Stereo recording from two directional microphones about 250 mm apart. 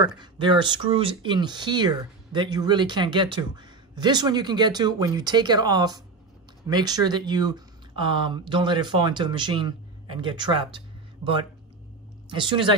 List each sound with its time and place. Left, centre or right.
0.0 s speech: centre
12.3 s speech: centre